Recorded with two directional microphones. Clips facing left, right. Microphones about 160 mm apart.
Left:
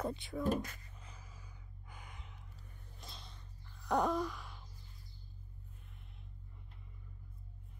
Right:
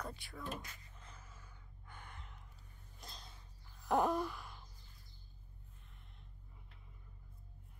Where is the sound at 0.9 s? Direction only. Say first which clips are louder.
Left 1 dB; 10° left (ahead or behind).